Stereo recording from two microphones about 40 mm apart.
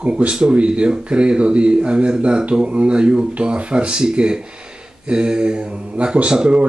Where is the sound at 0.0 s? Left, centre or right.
Right.